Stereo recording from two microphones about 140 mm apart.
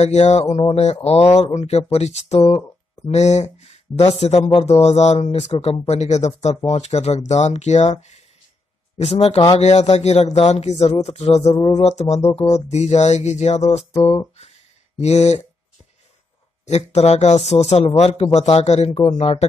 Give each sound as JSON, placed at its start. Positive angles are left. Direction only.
{"t": 0.0, "sound": "speech", "side_deg": 50}
{"t": 16.6, "sound": "speech", "side_deg": 50}
{"t": 19.0, "sound": "speech", "side_deg": 35}